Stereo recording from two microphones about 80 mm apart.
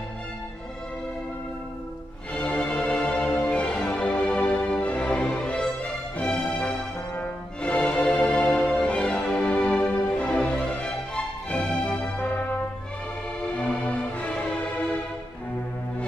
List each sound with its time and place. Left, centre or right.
2.3 s music: centre
7.2 s music: centre
13.7 s music: centre